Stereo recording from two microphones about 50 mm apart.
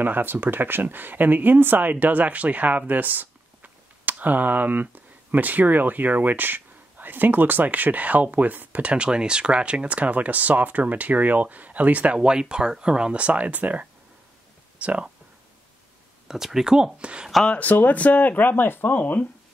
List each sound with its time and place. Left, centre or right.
0.0 s speech: right
2.9 s a sound: right
5.3 s speech: right
8.9 s speech: right
16.3 s speech: centre
17.5 s speech: left
18.9 s speech: left